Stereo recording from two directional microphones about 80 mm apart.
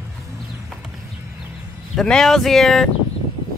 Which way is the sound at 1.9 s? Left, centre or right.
Centre.